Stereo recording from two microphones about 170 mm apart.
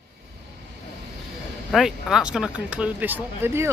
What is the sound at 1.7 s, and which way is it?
Speech, centre (ahead or behind).